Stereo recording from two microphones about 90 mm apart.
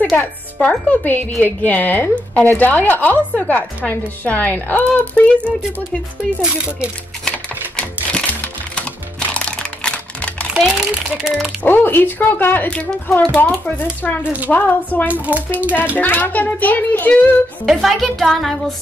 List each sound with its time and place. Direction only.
0.2 s a woman's voice: 15° left (ahead or behind)
6.4 s speech: 10° right (ahead or behind)
7.2 s typing: 10° left (ahead or behind)
9.3 s music: 10° left (ahead or behind)
10.5 s speech: 5° right (ahead or behind)
11.6 s a woman's voice: 20° left (ahead or behind)
15.2 s speech: 15° right (ahead or behind)
16.0 s a woman's voice: 20° left (ahead or behind)
17.6 s speech: centre (ahead or behind)